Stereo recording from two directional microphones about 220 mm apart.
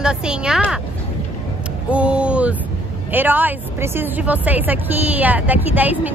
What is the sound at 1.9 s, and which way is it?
A woman's voice, 5° right (ahead or behind).